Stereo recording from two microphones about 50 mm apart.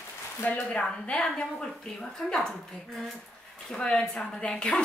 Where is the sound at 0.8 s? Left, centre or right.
Centre.